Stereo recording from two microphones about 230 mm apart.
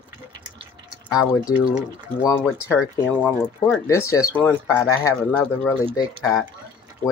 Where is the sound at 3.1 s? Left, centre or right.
Centre.